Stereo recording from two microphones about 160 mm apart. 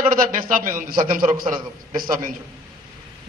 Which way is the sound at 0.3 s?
60° right (ahead or behind).